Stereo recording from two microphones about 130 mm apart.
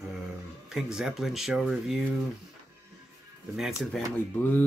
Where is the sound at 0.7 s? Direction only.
5° right (ahead or behind).